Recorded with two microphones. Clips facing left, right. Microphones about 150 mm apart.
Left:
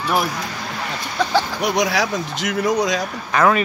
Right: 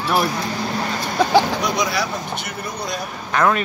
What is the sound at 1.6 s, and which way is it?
Speech, 75° left (ahead or behind).